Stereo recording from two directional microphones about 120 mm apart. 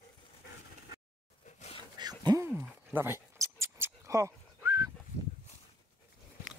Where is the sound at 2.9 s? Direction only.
20° right (ahead or behind).